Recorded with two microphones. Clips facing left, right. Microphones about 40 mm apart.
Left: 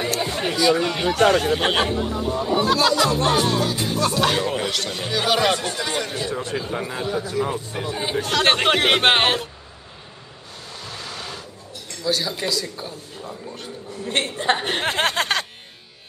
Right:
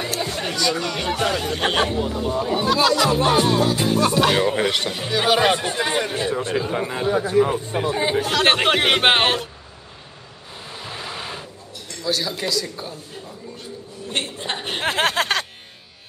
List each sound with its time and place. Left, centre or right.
0.0 s a sound: centre
1.2 s speech: centre
4.6 s speech: right
4.8 s speech: centre
7.1 s speech: right
8.2 s speech: centre
10.7 s vehicle: centre
12.0 s speech: centre
13.6 s a woman's voice: left
14.8 s a sound: centre